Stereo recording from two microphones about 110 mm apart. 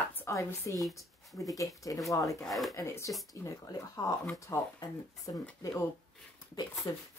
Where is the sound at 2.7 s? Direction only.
30° left (ahead or behind).